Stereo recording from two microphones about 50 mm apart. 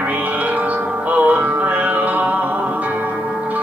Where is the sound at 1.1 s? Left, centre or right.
Right.